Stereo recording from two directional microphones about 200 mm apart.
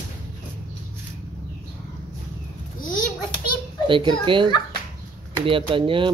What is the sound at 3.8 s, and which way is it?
Speech, 25° right (ahead or behind).